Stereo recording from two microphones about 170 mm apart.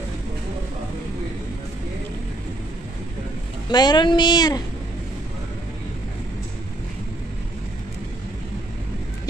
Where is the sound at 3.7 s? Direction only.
25° left (ahead or behind).